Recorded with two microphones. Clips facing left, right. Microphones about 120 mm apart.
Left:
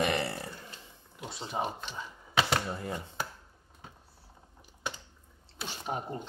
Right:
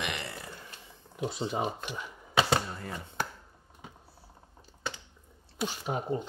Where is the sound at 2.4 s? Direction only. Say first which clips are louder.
Right 2 dB; 20° right (ahead or behind).